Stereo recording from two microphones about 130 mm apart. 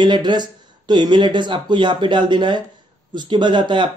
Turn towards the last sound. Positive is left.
turn(degrees=-35)  # may be behind; listen again after turning